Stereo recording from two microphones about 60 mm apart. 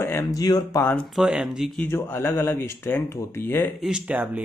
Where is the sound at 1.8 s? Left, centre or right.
Left.